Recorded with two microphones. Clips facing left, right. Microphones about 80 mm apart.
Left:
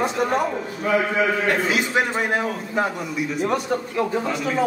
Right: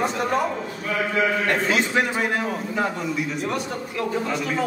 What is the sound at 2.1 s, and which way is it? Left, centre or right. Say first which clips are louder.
A man's voice: left 1 dB; left.